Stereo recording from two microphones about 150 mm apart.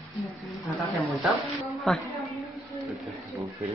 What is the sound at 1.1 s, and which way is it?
Speech, centre (ahead or behind).